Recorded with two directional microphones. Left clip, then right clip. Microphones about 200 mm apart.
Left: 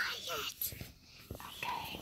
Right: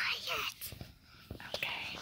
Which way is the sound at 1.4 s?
Centre (ahead or behind).